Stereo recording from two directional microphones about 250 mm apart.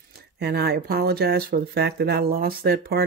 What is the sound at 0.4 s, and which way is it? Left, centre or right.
Speech, right.